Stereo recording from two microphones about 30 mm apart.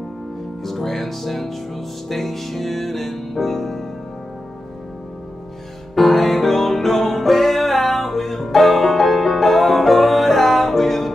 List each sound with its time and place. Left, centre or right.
0.7 s speech: centre
2.0 s music: centre
5.9 s music: centre